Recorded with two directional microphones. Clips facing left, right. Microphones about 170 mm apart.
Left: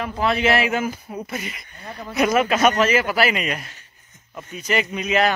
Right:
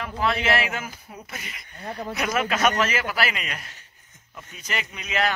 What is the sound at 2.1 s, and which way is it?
Speech, 15° left (ahead or behind).